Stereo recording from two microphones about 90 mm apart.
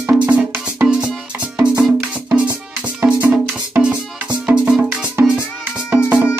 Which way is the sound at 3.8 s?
10° right (ahead or behind).